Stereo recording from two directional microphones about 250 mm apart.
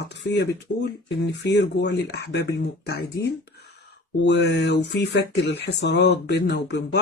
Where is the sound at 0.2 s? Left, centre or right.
Left.